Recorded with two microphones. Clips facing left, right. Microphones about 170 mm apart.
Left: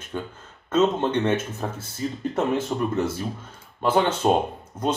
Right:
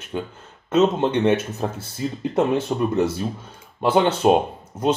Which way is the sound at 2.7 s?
15° right (ahead or behind).